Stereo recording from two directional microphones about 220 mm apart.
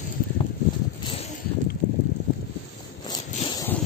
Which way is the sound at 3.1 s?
15° left (ahead or behind).